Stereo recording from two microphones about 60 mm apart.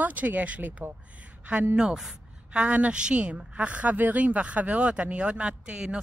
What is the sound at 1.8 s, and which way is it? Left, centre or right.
Speech, centre.